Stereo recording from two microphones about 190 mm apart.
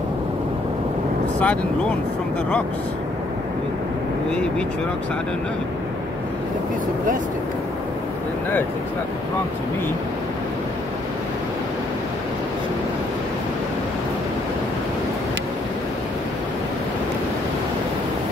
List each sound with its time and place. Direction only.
1.4 s speech: 5° left (ahead or behind)